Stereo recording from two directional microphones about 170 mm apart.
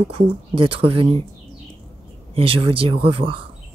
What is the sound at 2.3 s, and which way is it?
Speech, 30° right (ahead or behind).